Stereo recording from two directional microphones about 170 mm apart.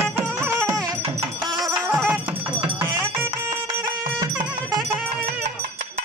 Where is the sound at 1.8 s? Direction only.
15° right (ahead or behind).